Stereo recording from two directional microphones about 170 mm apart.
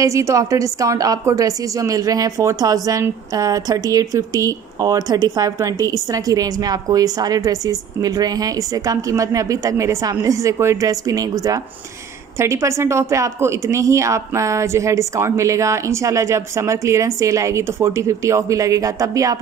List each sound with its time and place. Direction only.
0.0 s a woman's voice: 20° right (ahead or behind)